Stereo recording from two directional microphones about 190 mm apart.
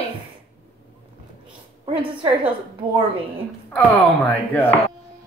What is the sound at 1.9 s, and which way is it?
Speech, 25° right (ahead or behind).